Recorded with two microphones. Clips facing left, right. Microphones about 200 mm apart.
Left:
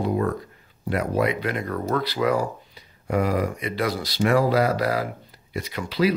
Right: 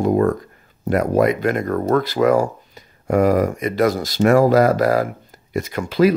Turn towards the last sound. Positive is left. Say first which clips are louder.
# right 7 dB
turn(degrees=-50)  # may be behind; listen again after turning